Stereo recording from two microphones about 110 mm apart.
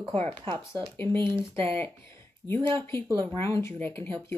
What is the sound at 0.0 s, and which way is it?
Speech, 75° right (ahead or behind).